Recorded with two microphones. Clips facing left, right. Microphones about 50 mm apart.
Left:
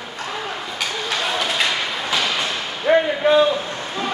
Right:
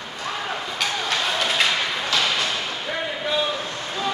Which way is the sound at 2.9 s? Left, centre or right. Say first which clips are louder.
Left 12 dB; left.